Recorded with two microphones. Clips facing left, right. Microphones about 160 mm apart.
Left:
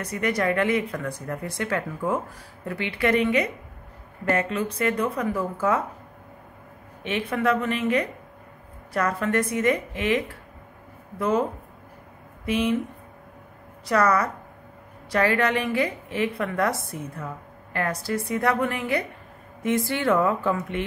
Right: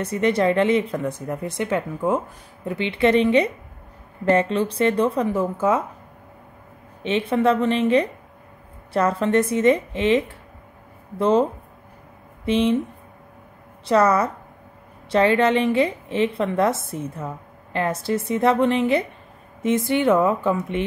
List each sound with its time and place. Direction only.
0.0 s speech: 25° right (ahead or behind)
7.0 s speech: 25° right (ahead or behind)
12.4 s speech: 25° right (ahead or behind)
13.8 s speech: 25° right (ahead or behind)